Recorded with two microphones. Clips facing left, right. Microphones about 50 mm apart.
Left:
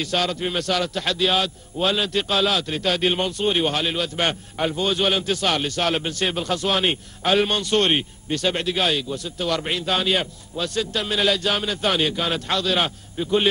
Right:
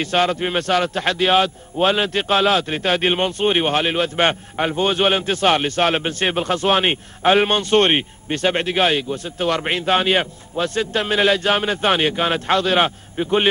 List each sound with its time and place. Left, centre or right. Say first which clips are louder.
0.0 s a man's voice: right 5 dB; right